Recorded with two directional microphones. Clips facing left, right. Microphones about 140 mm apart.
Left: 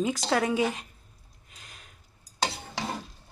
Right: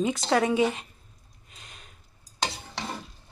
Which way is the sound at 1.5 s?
Centre (ahead or behind).